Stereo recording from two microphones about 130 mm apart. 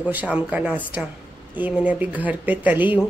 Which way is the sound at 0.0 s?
10° right (ahead or behind).